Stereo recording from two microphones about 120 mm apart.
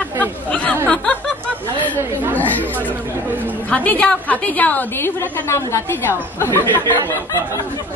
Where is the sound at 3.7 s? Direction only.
10° left (ahead or behind).